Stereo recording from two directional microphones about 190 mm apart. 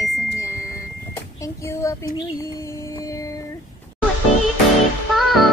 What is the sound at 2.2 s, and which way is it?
Music, 20° left (ahead or behind).